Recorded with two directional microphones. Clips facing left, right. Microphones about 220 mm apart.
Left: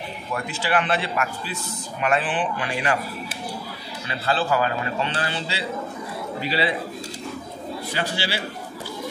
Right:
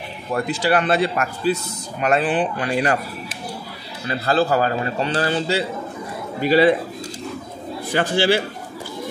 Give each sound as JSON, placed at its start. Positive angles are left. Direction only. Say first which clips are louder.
{"t": 0.3, "sound": "a man's voice", "louder": "right 6 dB", "side_deg": -40}
{"t": 4.1, "sound": "a man's voice", "louder": "right 5 dB", "side_deg": -40}
{"t": 7.9, "sound": "a man's voice", "louder": "right 11 dB", "side_deg": -50}